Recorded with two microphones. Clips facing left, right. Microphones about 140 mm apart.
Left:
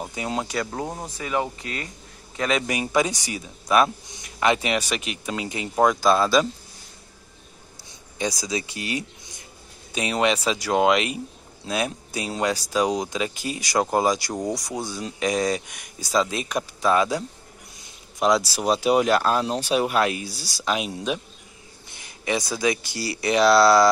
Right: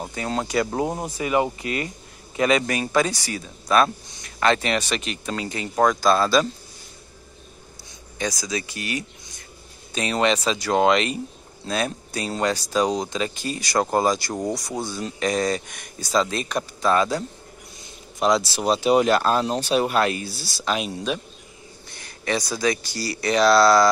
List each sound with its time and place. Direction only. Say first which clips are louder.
0.0 s speech: right 1 dB; 10° left (ahead or behind)
0.7 s a man's voice: right 5 dB; 15° right (ahead or behind)
2.6 s speech: right 1 dB; 15° left (ahead or behind)
8.3 s speech: even; 25° left (ahead or behind)
9.9 s speech: right 1 dB; 10° left (ahead or behind)
15.0 s speech: even; centre (ahead or behind)
18.2 s speech: even; 10° left (ahead or behind)
23.4 s speech: even; 5° left (ahead or behind)